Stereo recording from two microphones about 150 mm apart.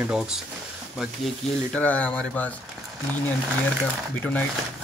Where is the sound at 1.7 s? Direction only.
10° left (ahead or behind).